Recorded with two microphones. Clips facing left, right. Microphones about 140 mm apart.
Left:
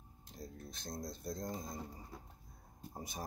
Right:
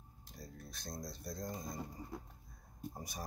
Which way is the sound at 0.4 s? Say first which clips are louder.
Left 2 dB; 20° left (ahead or behind).